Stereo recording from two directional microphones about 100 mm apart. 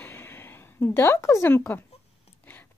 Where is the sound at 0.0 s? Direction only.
20° left (ahead or behind).